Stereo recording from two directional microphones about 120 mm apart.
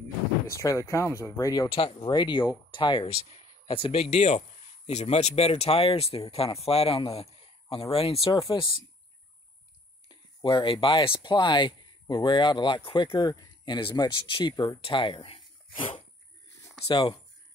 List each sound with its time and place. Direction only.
0.5 s speech: 25° left (ahead or behind)
1.7 s speech: 45° left (ahead or behind)
3.6 s speech: 55° left (ahead or behind)
10.0 s speech: 40° left (ahead or behind)
14.5 s speech: 25° left (ahead or behind)
14.8 s speech: 45° left (ahead or behind)